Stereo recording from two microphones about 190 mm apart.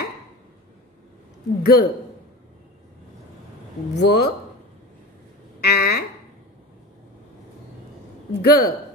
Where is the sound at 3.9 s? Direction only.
65° left (ahead or behind).